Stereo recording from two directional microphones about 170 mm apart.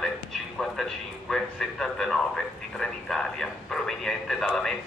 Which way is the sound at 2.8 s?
5° left (ahead or behind).